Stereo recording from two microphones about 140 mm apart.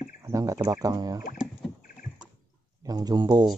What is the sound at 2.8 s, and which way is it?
Speech, 25° right (ahead or behind).